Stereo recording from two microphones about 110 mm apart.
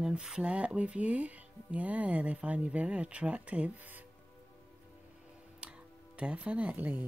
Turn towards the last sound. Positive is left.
turn(degrees=-15)  # may be behind; listen again after turning